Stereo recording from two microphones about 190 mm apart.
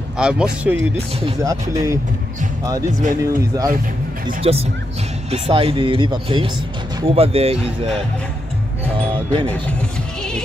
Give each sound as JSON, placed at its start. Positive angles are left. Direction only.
{"t": 0.2, "sound": "speech", "side_deg": -5}
{"t": 1.4, "sound": "speech", "side_deg": -15}
{"t": 3.2, "sound": "speech", "side_deg": -15}
{"t": 4.4, "sound": "speech", "side_deg": -30}
{"t": 9.1, "sound": "speech", "side_deg": -25}
{"t": 9.5, "sound": "speech", "side_deg": 5}